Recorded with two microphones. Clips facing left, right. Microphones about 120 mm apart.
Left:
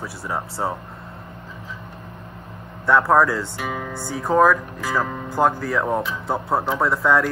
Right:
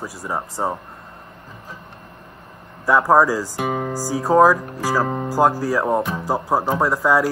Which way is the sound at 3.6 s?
40° right (ahead or behind).